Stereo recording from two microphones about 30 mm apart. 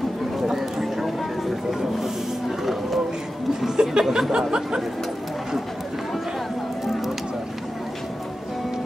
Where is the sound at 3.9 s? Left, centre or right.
Right.